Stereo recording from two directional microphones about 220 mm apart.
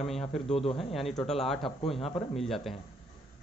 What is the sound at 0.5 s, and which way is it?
Speech, 25° left (ahead or behind).